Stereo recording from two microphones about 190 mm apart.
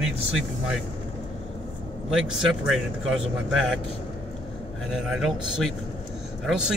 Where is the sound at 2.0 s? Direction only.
5° right (ahead or behind).